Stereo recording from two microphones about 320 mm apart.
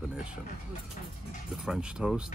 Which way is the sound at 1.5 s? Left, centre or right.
Centre.